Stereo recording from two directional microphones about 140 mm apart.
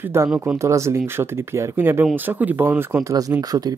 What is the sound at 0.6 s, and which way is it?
Speech, 20° right (ahead or behind).